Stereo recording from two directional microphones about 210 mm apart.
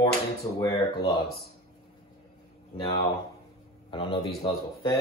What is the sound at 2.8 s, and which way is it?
Speech, 20° left (ahead or behind).